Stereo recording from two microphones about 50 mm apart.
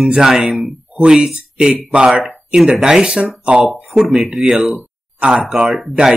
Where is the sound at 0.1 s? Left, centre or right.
Centre.